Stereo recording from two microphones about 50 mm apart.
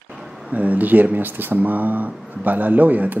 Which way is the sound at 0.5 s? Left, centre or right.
Right.